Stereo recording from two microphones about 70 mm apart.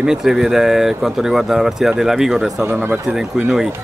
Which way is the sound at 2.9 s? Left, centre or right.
Centre.